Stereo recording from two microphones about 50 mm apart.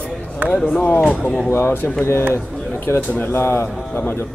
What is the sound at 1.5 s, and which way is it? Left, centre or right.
Speech, left.